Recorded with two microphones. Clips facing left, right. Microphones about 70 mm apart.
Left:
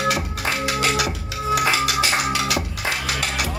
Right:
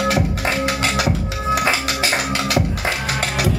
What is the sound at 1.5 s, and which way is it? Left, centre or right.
Music, right.